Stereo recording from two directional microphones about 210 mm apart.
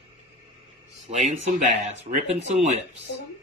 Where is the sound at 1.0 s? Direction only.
30° right (ahead or behind).